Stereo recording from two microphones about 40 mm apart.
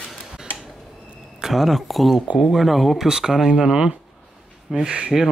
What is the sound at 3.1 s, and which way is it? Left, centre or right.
Speech, centre.